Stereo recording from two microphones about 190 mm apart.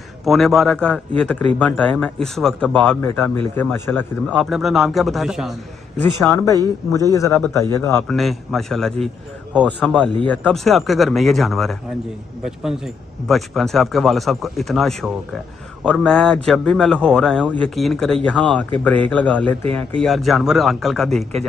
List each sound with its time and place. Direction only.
0.2 s a man's voice: centre (ahead or behind)
4.3 s a man's voice: centre (ahead or behind)
6.3 s a man's voice: 15° left (ahead or behind)
8.1 s a man's voice: centre (ahead or behind)